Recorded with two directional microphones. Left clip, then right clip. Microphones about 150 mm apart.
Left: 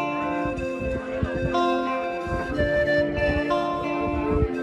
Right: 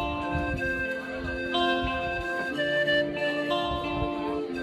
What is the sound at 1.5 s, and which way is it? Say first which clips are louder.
Music: left 3 dB; 25° right (ahead or behind).